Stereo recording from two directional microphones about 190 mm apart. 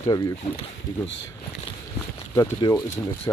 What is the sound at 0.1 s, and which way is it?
Speech, 20° left (ahead or behind).